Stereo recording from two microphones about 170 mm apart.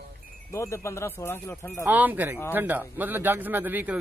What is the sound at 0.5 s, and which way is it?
Speech, 15° left (ahead or behind).